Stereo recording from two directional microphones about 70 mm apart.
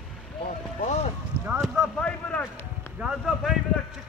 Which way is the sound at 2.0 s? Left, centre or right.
Centre.